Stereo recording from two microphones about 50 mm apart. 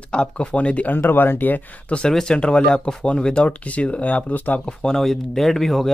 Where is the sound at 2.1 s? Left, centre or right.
Centre; by 4.6 s left.